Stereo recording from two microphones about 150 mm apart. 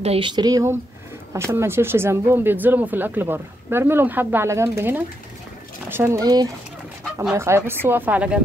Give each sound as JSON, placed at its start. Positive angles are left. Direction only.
{"t": 0.0, "sound": "speech", "side_deg": -40}